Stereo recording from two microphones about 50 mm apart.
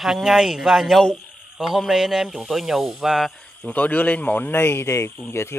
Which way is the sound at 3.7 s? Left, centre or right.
Left.